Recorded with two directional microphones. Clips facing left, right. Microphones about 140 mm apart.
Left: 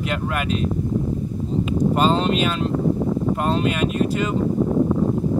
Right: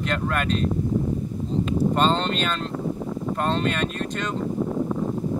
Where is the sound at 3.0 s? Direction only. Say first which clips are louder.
Left 7 dB; 50° left (ahead or behind).